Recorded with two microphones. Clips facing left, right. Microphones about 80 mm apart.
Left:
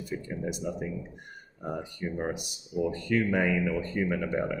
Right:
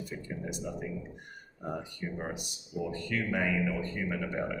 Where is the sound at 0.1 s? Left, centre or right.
Centre.